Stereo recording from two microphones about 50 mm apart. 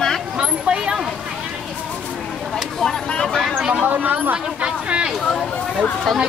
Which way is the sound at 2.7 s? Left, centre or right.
Centre.